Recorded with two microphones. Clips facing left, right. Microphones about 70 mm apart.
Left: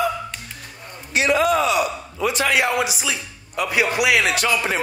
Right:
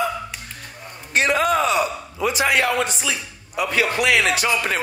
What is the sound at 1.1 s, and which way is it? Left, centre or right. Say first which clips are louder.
Speech: left 1 dB; right.